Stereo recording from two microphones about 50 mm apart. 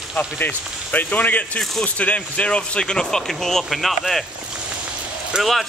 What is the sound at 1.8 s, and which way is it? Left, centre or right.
Speech, left.